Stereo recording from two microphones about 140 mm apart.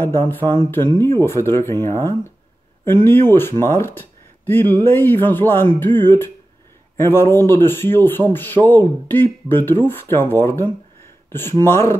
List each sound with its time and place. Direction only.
0.0 s speech: 15° left (ahead or behind)